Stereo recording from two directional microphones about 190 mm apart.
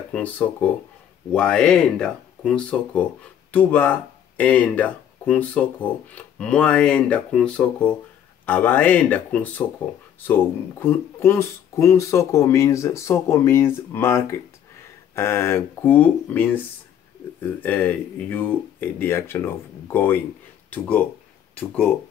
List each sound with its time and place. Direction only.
0.1 s speech: 10° left (ahead or behind)